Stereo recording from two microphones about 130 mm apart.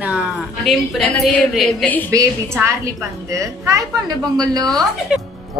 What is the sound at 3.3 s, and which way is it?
A woman's voice, 25° right (ahead or behind).